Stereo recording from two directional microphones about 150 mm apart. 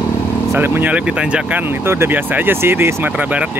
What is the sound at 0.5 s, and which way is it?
Speech, 15° right (ahead or behind).